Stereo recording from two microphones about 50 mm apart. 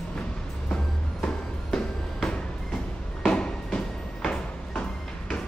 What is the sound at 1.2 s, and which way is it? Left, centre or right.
Music, centre.